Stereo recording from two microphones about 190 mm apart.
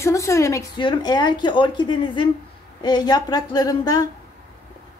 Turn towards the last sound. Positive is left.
turn(degrees=20)  # may be behind; listen again after turning